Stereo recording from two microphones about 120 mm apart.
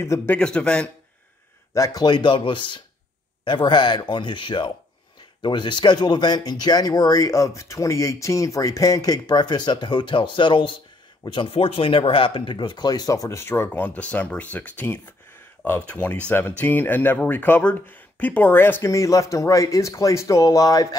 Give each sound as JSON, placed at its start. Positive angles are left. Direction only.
{"t": 0.0, "sound": "speech", "side_deg": 20}
{"t": 0.4, "sound": "speech", "side_deg": 10}
{"t": 1.7, "sound": "speech", "side_deg": 30}